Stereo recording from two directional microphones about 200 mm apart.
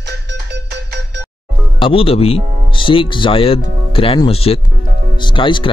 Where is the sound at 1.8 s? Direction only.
25° left (ahead or behind).